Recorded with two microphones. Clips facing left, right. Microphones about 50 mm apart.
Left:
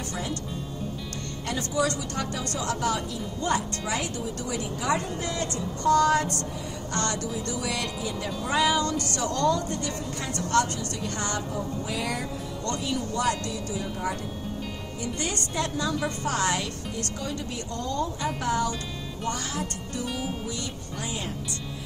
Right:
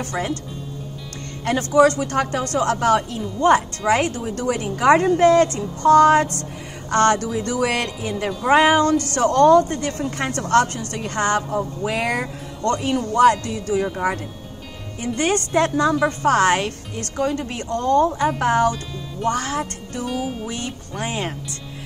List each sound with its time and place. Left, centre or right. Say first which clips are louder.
0.0 s speech: right 8 dB; right
1.4 s speech: right 12 dB; right
20.1 s music: right 8 dB; centre
20.4 s speech: right 5 dB; right